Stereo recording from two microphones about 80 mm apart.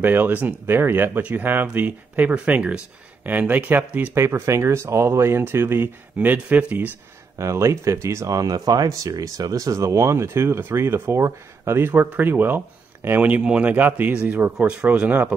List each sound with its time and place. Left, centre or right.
0.0 s speech: right
4.1 s speech: right
6.1 s speech: centre
7.3 s speech: right
14.7 s speech: centre